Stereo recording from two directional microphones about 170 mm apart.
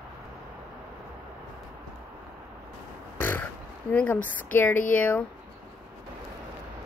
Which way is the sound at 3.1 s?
10° left (ahead or behind).